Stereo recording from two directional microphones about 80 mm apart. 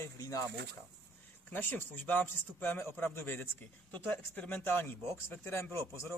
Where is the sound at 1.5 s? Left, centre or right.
Left.